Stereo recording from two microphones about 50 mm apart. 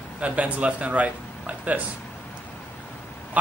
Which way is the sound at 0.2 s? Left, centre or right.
Right.